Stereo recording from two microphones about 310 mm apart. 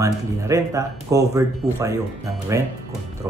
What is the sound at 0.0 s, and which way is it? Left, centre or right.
Speech, centre.